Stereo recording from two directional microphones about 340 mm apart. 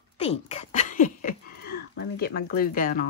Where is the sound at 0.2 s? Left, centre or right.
Centre.